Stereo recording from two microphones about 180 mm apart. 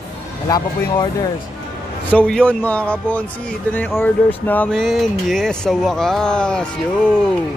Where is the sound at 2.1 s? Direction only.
5° left (ahead or behind).